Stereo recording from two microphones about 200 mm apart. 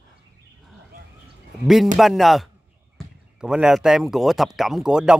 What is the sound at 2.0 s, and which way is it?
A man's voice, centre (ahead or behind).